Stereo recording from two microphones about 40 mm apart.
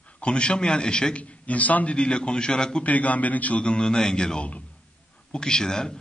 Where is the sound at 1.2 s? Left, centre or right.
Left.